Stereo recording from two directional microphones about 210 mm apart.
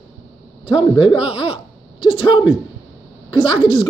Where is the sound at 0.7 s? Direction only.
25° left (ahead or behind).